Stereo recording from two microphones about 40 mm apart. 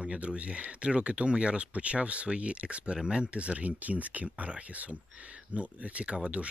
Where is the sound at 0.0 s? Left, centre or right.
Right.